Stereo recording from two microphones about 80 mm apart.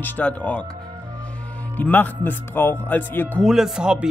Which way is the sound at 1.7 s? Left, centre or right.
Left.